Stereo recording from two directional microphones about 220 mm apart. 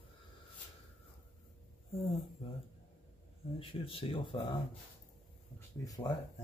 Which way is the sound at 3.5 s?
25° left (ahead or behind).